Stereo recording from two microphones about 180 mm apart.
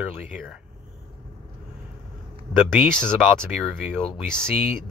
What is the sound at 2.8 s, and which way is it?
Speech, 50° right (ahead or behind).